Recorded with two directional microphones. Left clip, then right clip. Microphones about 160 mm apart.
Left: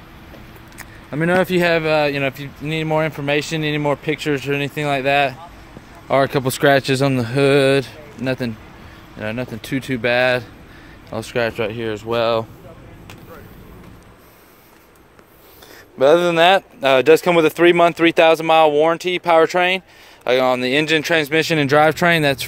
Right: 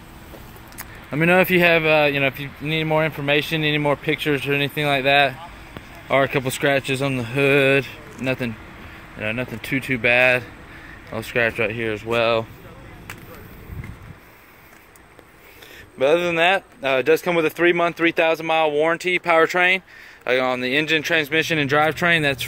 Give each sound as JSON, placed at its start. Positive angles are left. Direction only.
{"t": 0.7, "sound": "a sound", "side_deg": -5}
{"t": 1.5, "sound": "speech", "side_deg": 5}
{"t": 6.0, "sound": "speech", "side_deg": 30}
{"t": 6.4, "sound": "speech", "side_deg": 45}
{"t": 7.5, "sound": "speech", "side_deg": 25}
{"t": 16.0, "sound": "speech", "side_deg": 35}
{"t": 18.8, "sound": "speech", "side_deg": 15}
{"t": 20.2, "sound": "speech", "side_deg": 35}